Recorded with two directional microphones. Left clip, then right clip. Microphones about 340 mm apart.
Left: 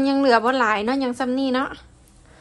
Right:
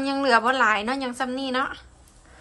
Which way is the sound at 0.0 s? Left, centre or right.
Centre.